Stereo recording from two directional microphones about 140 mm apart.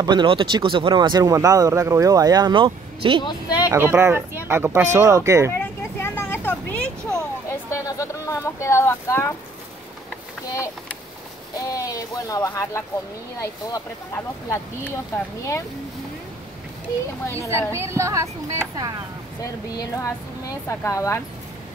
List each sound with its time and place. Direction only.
0.0 s speech: 35° right (ahead or behind)
3.3 s speech: 25° left (ahead or behind)
3.7 s speech: 15° right (ahead or behind)
5.5 s vehicle: 15° left (ahead or behind)
7.4 s a sound: 25° left (ahead or behind)
11.6 s speech: 25° left (ahead or behind)
17.4 s speech: 20° right (ahead or behind)
19.8 s speech: 20° left (ahead or behind)